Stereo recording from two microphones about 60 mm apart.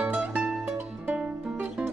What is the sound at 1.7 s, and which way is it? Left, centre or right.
Music, centre.